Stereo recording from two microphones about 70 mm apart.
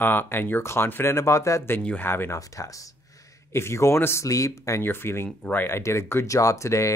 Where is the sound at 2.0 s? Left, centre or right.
Left.